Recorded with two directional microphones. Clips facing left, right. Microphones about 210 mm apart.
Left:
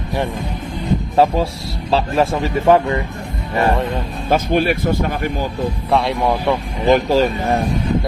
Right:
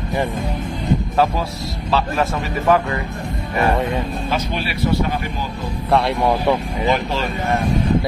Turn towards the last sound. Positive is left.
turn(degrees=40)  # may be behind; listen again after turning